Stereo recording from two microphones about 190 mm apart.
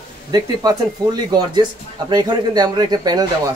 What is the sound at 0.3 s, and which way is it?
Speech, 20° right (ahead or behind).